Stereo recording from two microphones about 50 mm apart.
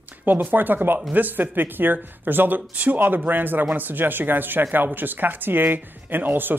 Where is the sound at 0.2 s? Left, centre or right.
Right.